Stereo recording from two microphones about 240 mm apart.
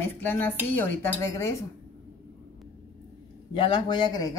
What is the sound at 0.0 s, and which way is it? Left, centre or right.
Speech, centre.